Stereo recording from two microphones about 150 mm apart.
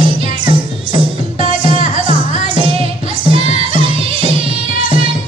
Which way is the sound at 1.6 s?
35° right (ahead or behind).